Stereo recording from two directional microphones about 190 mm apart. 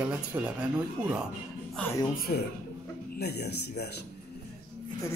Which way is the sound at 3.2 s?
60° left (ahead or behind).